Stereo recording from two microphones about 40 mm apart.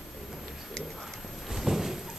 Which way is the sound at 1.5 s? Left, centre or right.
Centre.